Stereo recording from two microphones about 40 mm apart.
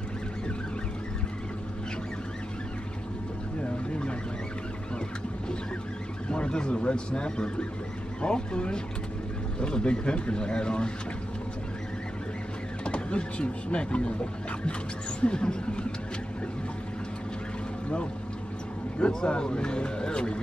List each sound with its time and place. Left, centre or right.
6.2 s speech: left
12.8 s speech: left
15.1 s speech: left
18.9 s speech: left